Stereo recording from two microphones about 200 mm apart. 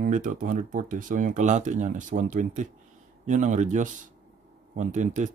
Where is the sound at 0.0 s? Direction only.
40° right (ahead or behind).